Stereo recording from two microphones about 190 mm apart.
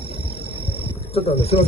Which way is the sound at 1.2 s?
35° left (ahead or behind).